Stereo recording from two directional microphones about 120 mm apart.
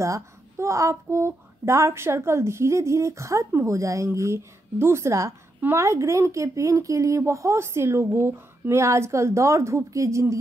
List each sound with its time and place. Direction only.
0.0 s a child's voice: 25° right (ahead or behind)